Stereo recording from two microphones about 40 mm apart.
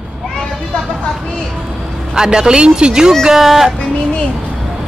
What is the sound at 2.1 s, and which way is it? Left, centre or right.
Speech, centre.